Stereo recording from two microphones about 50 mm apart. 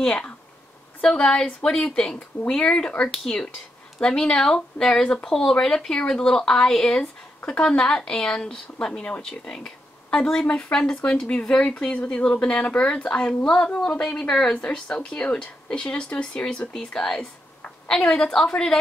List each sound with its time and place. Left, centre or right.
1.0 s speech: centre
9.0 s a woman's voice: left